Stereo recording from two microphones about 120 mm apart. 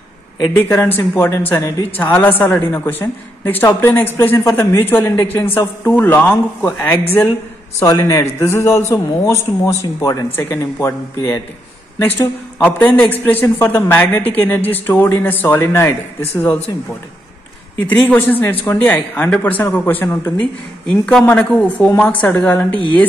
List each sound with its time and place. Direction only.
0.5 s a man's voice: 20° left (ahead or behind)
17.8 s a woman's voice: 15° left (ahead or behind)
20.9 s a woman's voice: 5° left (ahead or behind)